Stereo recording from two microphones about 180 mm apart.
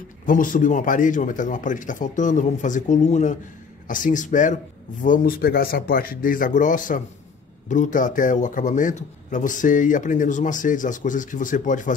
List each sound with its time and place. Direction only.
0.3 s a man's voice: 50° left (ahead or behind)